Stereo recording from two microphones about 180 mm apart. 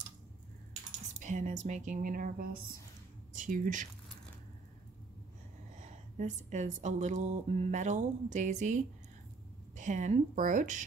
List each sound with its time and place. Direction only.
1.2 s speech: 45° right (ahead or behind)
5.8 s speech: 40° right (ahead or behind)